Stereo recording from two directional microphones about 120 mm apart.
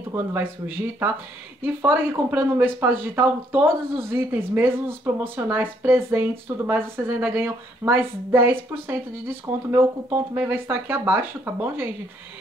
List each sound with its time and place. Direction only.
0.1 s speech: 20° right (ahead or behind)